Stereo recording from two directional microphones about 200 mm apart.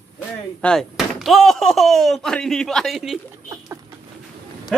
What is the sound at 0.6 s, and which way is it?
Speech, 5° left (ahead or behind).